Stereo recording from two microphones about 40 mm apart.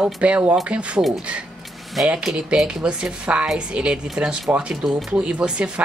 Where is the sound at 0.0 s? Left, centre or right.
Right.